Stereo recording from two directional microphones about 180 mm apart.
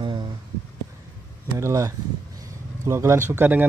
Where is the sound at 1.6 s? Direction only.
15° right (ahead or behind).